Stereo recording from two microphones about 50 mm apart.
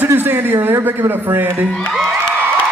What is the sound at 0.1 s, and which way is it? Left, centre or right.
Speech, right.